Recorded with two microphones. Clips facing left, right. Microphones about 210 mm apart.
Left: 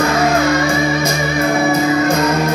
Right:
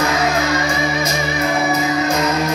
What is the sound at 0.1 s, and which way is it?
Music, 55° left (ahead or behind).